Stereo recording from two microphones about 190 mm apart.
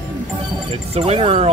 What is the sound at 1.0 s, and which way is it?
Speech, 30° right (ahead or behind).